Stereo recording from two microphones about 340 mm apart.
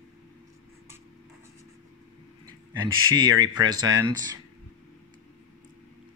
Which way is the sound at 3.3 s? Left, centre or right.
Centre.